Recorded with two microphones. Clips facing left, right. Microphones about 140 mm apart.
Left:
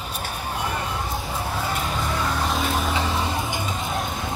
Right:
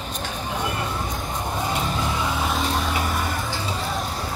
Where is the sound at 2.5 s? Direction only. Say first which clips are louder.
Even; 5° left (ahead or behind).